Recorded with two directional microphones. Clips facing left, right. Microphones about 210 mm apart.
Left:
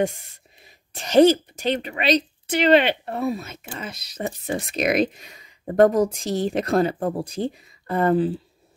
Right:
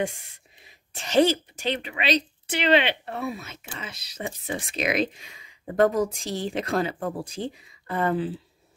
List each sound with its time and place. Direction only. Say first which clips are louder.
1.0 s speech: left 6 dB; 45° left (ahead or behind)